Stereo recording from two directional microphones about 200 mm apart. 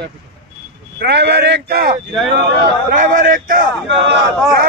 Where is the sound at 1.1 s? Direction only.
55° right (ahead or behind).